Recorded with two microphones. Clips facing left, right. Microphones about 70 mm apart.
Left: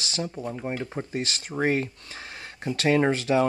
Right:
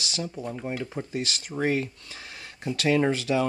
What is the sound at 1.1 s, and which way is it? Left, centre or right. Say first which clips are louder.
Speech: left 1 dB; left.